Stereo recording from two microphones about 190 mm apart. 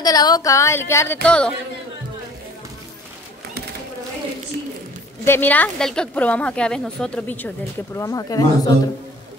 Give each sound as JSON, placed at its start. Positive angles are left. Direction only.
{"t": 0.0, "sound": "a woman's voice", "side_deg": 20}
{"t": 5.2, "sound": "a woman's voice", "side_deg": 10}